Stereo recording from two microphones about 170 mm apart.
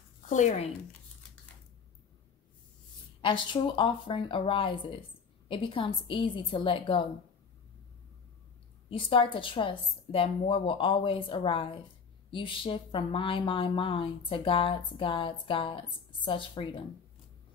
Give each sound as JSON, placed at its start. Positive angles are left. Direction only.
{"t": 0.3, "sound": "speech", "side_deg": 45}
{"t": 3.2, "sound": "a woman's voice", "side_deg": 30}
{"t": 8.9, "sound": "a woman's voice", "side_deg": 30}